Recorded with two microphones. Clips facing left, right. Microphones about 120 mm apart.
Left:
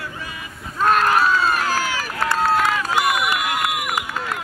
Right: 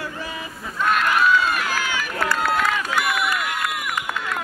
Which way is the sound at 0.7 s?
40° left (ahead or behind).